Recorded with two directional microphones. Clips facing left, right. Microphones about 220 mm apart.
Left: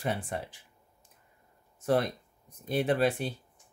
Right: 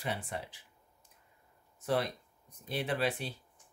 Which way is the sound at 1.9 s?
45° left (ahead or behind).